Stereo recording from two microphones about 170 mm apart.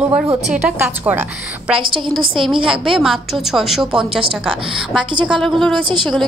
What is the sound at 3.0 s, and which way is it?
A woman's voice, centre (ahead or behind).